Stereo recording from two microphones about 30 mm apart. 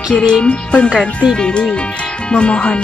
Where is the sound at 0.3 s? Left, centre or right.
Left.